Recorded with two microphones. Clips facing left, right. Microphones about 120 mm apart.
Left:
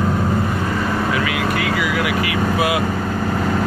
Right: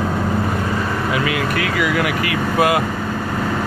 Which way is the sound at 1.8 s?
50° right (ahead or behind).